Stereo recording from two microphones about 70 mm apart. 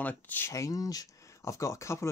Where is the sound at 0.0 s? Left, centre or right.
Left.